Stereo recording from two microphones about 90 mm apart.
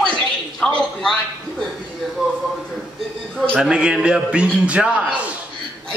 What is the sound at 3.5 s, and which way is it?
A man's voice, 10° right (ahead or behind).